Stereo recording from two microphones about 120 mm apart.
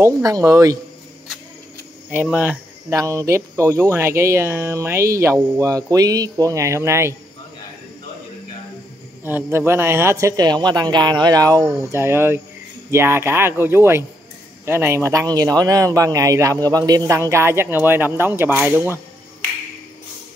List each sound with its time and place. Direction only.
0.0 s speech: 25° right (ahead or behind)
2.0 s speech: 10° right (ahead or behind)
2.9 s speech: 25° right (ahead or behind)
9.2 s speech: 20° right (ahead or behind)